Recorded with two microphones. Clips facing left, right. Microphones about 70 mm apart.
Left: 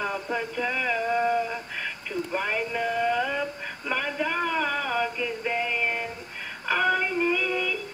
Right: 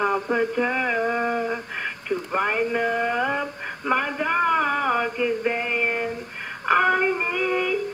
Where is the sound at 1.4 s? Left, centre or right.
Right.